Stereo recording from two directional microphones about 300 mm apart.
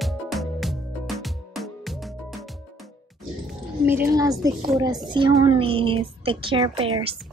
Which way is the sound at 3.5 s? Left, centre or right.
Centre.